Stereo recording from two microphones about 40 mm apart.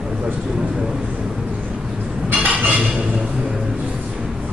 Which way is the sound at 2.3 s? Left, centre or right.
Right.